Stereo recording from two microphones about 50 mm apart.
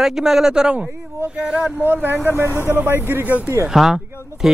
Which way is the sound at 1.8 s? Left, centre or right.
Right.